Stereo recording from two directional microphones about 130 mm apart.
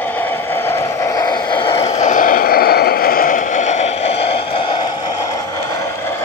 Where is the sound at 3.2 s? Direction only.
85° left.